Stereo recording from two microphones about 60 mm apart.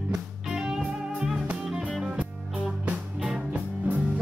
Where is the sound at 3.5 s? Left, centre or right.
Right.